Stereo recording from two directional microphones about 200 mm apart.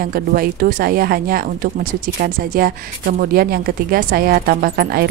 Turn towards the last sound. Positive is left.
turn(degrees=-50)  # may be behind; listen again after turning